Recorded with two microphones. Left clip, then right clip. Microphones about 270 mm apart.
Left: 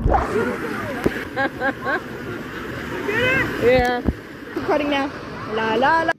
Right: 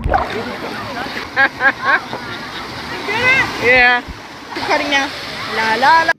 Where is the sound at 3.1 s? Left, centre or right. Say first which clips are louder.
Right 6 dB; right.